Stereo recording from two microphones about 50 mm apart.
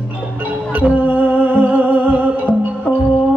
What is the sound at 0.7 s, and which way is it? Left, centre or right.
Music, right.